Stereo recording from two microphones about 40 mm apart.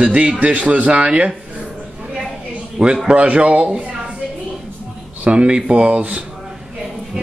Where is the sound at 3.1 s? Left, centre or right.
Right.